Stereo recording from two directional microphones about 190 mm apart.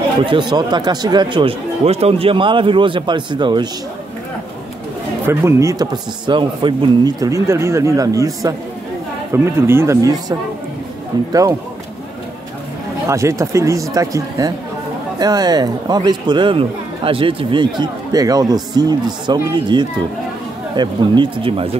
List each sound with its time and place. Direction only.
0.3 s speech: 25° right (ahead or behind)
5.2 s speech: 10° right (ahead or behind)
11.1 s speech: 20° right (ahead or behind)
13.1 s speech: 15° right (ahead or behind)